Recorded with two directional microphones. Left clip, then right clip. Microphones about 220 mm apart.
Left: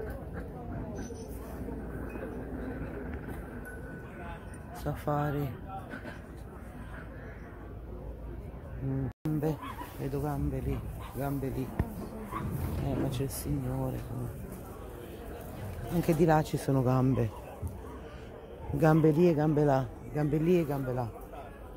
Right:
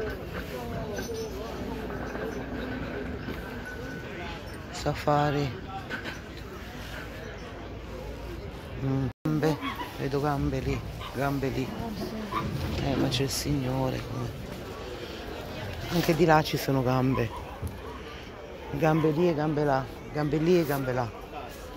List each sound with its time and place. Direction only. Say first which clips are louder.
4.7 s speech: right 7 dB; 10° left (ahead or behind)
9.2 s a sound: right 5 dB; centre (ahead or behind)
10.1 s speech: right 7 dB; 5° left (ahead or behind)
12.8 s speech: right 7 dB; 5° left (ahead or behind)
16.1 s speech: right 4 dB; 20° left (ahead or behind)
18.8 s speech: even; 30° left (ahead or behind)
19.1 s speech: even; 45° left (ahead or behind)
19.8 s speech: right 3 dB; 25° left (ahead or behind)
20.7 s speech: right 5 dB; 5° left (ahead or behind)